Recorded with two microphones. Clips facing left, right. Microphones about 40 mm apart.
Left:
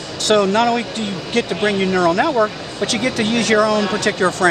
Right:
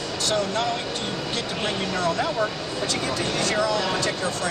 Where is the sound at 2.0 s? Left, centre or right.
Left.